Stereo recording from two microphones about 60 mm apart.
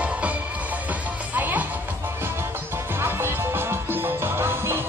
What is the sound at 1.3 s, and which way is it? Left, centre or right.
Music, right.